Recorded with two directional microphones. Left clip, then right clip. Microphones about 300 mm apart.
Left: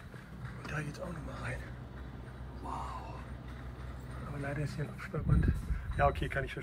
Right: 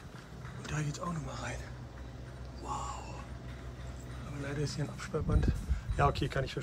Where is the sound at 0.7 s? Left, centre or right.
Centre.